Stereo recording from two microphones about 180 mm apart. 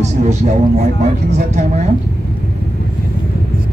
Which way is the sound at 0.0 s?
40° right (ahead or behind).